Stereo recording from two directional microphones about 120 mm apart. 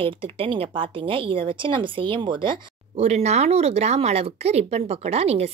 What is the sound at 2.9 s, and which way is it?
Speech, 65° right (ahead or behind).